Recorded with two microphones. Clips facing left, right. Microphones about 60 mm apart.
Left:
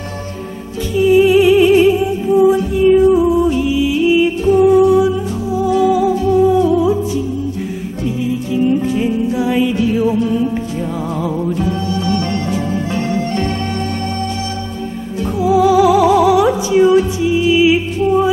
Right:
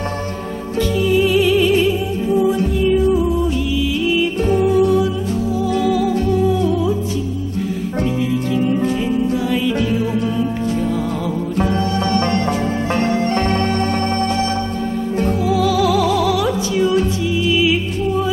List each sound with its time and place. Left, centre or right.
1.0 s music: centre
9.0 s music: centre
11.6 s music: right
15.4 s music: centre